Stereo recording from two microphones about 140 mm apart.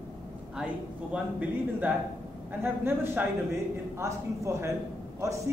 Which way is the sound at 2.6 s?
15° right (ahead or behind).